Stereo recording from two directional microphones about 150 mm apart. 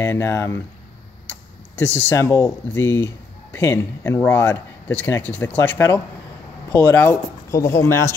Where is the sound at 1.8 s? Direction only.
15° left (ahead or behind).